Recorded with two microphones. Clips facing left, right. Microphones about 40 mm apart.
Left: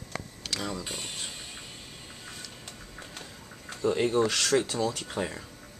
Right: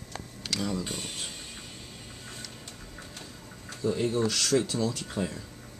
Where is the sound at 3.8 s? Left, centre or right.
Left.